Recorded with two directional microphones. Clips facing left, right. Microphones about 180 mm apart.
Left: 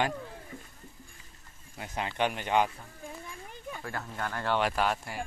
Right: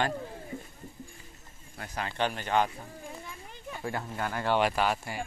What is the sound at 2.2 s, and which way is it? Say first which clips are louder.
Speech: even; 15° left (ahead or behind).